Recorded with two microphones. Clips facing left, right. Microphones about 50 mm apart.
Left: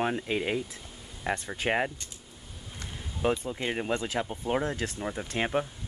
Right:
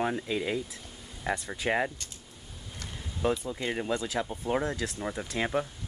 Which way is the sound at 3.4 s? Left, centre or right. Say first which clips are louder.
Left 1 dB; left.